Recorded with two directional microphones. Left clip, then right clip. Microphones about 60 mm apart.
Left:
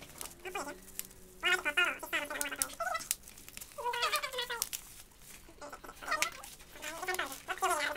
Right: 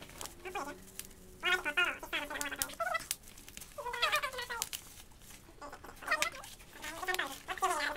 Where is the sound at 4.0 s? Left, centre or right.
Right.